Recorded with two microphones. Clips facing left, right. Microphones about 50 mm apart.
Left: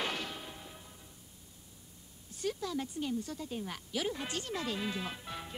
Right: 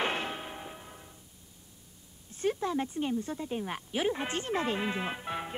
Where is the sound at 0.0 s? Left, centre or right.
Right.